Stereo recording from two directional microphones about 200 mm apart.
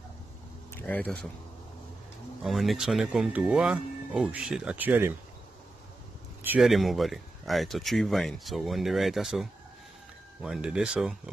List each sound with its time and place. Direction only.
0.7 s speech: 5° left (ahead or behind)
2.4 s speech: centre (ahead or behind)
6.4 s speech: 5° right (ahead or behind)